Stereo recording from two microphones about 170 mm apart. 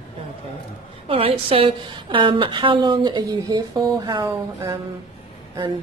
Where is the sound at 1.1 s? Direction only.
35° right (ahead or behind).